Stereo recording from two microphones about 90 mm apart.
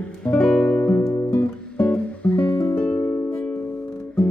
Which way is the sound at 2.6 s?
30° left (ahead or behind).